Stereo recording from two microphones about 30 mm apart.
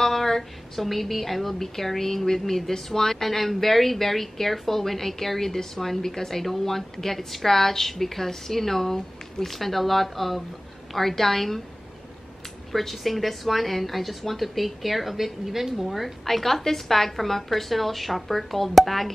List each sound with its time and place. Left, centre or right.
0.0 s a woman's voice: centre
12.7 s a woman's voice: centre